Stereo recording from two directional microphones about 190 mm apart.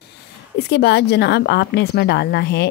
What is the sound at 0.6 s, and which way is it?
A woman's voice, 60° left (ahead or behind).